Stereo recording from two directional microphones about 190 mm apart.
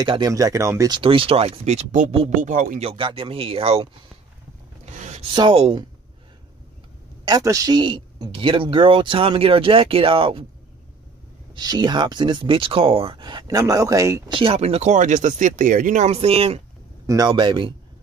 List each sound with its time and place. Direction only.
0.0 s speech: 20° right (ahead or behind); by 2.8 s 45° right (ahead or behind)
2.8 s speech: 30° right (ahead or behind)
4.8 s a sound: 40° right (ahead or behind)
5.3 s speech: 25° right (ahead or behind)
7.2 s speech: 20° right (ahead or behind)
11.5 s speech: 20° right (ahead or behind)
14.4 s speech: 30° right (ahead or behind)
17.0 s speech: 20° right (ahead or behind)